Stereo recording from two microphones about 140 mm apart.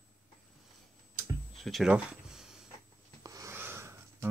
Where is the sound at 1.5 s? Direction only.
Centre (ahead or behind).